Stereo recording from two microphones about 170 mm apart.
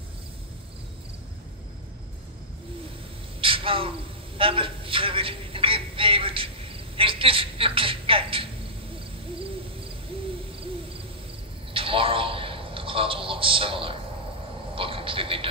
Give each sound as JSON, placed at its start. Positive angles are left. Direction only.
{"t": 3.3, "sound": "a sound", "side_deg": -30}
{"t": 4.4, "sound": "a woman's voice", "side_deg": -30}
{"t": 11.7, "sound": "a man's voice", "side_deg": -30}